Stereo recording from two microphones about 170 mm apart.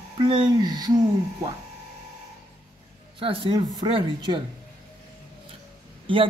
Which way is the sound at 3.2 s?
30° right (ahead or behind).